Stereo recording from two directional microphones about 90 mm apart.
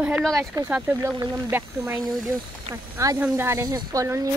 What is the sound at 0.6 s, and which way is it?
Speech, 15° right (ahead or behind).